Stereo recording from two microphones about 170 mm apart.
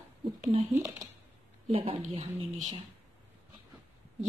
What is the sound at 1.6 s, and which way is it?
Speech, 35° right (ahead or behind).